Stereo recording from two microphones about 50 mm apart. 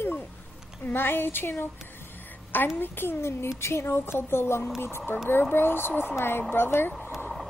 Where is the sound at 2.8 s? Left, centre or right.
Left.